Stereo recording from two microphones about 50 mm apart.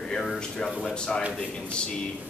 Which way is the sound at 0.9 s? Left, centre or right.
Centre.